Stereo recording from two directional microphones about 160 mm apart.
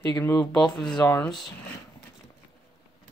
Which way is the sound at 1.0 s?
15° left (ahead or behind).